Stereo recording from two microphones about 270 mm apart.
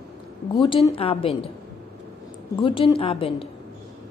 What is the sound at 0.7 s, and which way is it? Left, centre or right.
Speech, centre.